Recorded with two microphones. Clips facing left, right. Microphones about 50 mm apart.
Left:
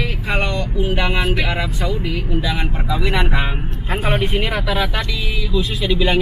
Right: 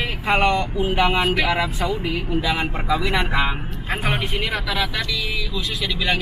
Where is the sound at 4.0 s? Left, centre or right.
Centre.